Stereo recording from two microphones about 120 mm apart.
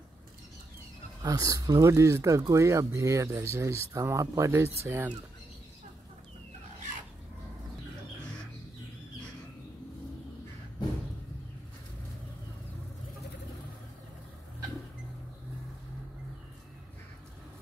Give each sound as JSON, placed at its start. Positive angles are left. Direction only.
{"t": 1.2, "sound": "speech", "side_deg": -30}